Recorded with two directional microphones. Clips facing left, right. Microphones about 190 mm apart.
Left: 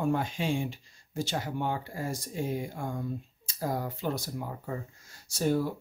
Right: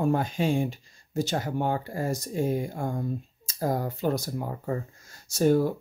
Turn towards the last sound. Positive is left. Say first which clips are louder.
# right 6 dB
turn(degrees=-45)  # may be behind; listen again after turning